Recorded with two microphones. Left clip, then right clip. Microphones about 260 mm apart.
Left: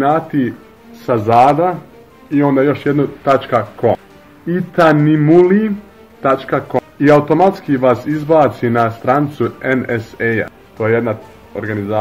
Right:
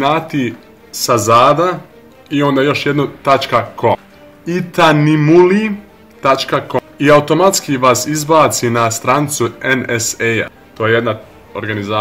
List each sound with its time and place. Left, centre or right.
0.0 s speech: centre